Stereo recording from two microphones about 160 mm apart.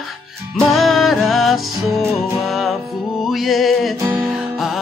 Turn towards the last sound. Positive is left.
turn(degrees=0)  # may be behind; listen again after turning